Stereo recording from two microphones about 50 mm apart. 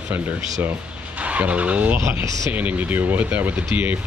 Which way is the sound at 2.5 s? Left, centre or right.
Right.